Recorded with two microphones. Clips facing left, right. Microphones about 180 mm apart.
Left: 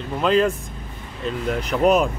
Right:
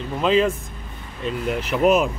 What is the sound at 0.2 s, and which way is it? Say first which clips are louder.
Speech: even; centre (ahead or behind).